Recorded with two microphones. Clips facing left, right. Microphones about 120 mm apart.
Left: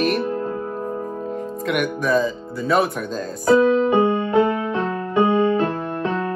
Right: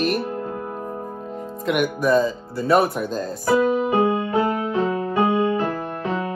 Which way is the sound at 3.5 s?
25° left (ahead or behind).